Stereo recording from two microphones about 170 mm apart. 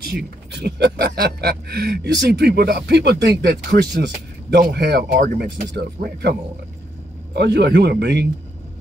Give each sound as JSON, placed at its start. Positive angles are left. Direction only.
{"t": 0.6, "sound": "speech", "side_deg": -85}
{"t": 7.3, "sound": "speech", "side_deg": -85}